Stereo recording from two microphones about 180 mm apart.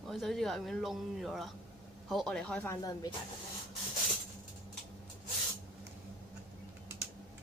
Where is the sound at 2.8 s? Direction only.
20° left (ahead or behind).